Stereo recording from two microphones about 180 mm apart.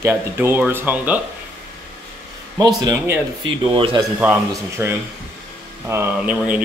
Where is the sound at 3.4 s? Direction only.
30° right (ahead or behind).